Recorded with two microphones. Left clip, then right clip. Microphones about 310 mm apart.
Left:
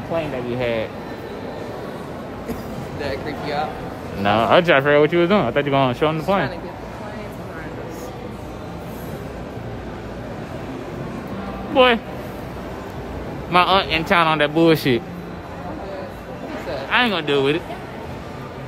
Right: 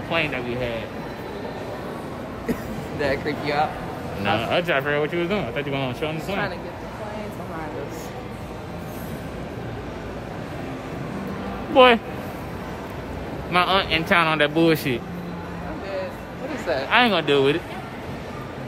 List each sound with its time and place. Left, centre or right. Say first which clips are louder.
3.0 s speech: right 3 dB; right
4.2 s speech: left 7 dB; centre
11.7 s speech: right 1 dB; centre
13.5 s speech: left 4 dB; centre
16.9 s speech: even; centre